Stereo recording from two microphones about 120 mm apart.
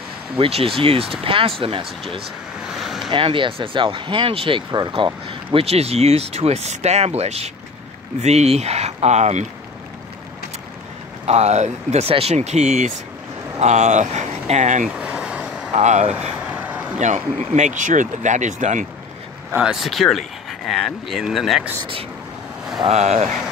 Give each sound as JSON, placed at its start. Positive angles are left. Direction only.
{"t": 0.4, "sound": "speech", "side_deg": -55}
{"t": 2.6, "sound": "vehicle", "side_deg": -5}
{"t": 3.1, "sound": "speech", "side_deg": -45}
{"t": 11.2, "sound": "speech", "side_deg": -65}
{"t": 14.9, "sound": "vehicle", "side_deg": -5}
{"t": 15.7, "sound": "speech", "side_deg": -75}
{"t": 16.5, "sound": "vehicle", "side_deg": -10}
{"t": 17.0, "sound": "speech", "side_deg": -80}
{"t": 19.6, "sound": "speech", "side_deg": -5}
{"t": 22.8, "sound": "speech", "side_deg": -70}